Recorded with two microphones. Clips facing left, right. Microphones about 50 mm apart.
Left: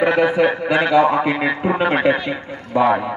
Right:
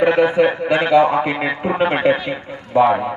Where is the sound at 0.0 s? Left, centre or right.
Right.